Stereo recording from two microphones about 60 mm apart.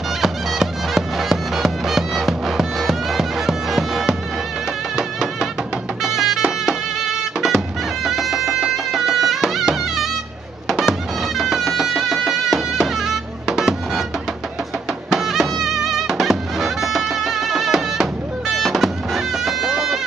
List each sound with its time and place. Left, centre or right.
0.2 s bagpipes: centre
4.9 s music: centre
15.0 s music: centre